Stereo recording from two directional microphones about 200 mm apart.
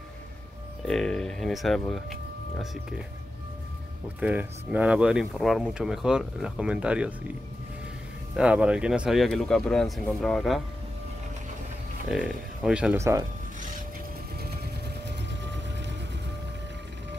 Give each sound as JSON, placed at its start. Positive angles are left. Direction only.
{"t": 0.8, "sound": "speech", "side_deg": 5}
{"t": 4.2, "sound": "speech", "side_deg": -5}
{"t": 8.4, "sound": "speech", "side_deg": -5}
{"t": 12.1, "sound": "speech", "side_deg": -5}
{"t": 12.9, "sound": "speech", "side_deg": -15}
{"t": 15.0, "sound": "vehicle", "side_deg": -60}